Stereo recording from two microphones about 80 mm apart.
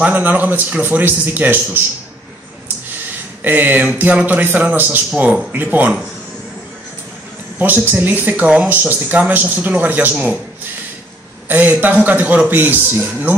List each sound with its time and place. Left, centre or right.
0.0 s a man's voice: right
3.4 s a man's voice: right
7.5 s a man's voice: right
11.4 s a man's voice: right